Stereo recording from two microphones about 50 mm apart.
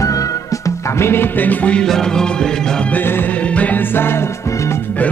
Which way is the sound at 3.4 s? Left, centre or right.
Left.